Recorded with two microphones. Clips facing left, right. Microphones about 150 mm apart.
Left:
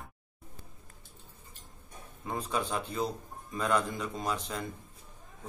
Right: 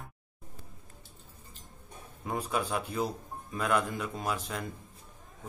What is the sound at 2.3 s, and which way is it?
A man's voice, 10° right (ahead or behind).